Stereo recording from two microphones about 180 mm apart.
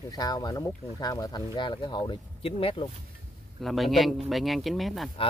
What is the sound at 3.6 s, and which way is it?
Speech, centre (ahead or behind).